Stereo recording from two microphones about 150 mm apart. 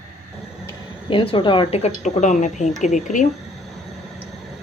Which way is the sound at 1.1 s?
35° left (ahead or behind).